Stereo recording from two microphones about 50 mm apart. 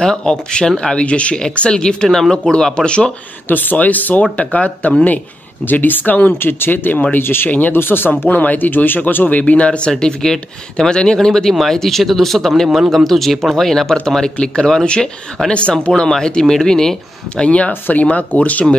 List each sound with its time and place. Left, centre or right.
0.0 s speech: centre
2.0 s speech: centre
3.4 s speech: left
6.3 s speech: left
8.3 s speech: left; by 16.9 s centre
17.4 s speech: left